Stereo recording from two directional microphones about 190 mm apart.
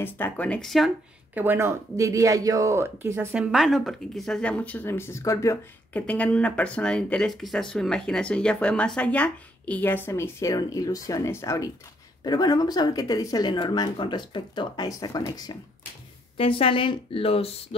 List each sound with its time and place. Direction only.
0.0 s speech: 10° left (ahead or behind); by 17.6 s 30° left (ahead or behind)